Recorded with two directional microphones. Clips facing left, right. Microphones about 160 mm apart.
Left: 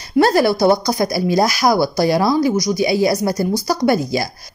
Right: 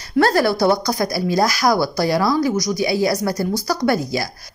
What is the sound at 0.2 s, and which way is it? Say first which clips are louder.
A woman's voice: left 2 dB; 15° left (ahead or behind).